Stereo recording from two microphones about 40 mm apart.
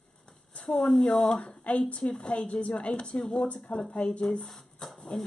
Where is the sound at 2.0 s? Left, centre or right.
Left.